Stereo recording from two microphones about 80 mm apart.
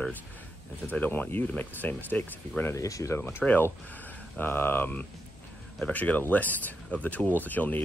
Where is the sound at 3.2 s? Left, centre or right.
Left.